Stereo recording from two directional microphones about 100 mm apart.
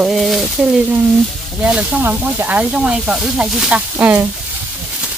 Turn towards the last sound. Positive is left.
turn(degrees=-20)  # may be behind; listen again after turning